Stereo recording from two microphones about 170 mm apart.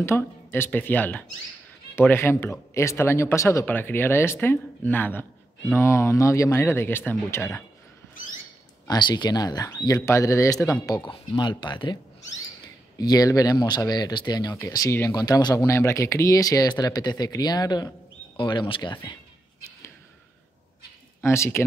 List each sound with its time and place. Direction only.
0.0 s speech: 15° left (ahead or behind)
8.8 s speech: 25° left (ahead or behind)
21.2 s speech: 15° left (ahead or behind)